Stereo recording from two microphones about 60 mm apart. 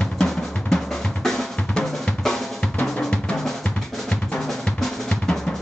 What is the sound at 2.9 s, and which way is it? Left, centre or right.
Drum, centre.